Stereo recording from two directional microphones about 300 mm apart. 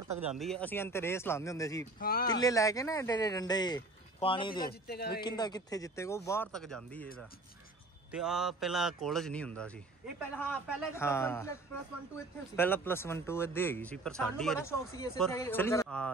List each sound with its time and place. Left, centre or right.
0.2 s speech: centre
2.0 s speech: left
2.2 s speech: centre
4.6 s speech: left
5.2 s speech: centre
8.1 s a man's voice: centre
12.5 s speech: centre